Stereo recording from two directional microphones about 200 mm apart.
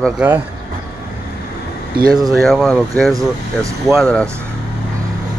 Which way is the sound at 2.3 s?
Centre (ahead or behind).